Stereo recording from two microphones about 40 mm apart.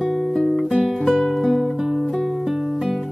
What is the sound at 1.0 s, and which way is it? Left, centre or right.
Music, centre.